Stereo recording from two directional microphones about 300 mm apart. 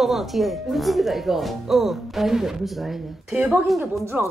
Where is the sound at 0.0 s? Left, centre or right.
Centre.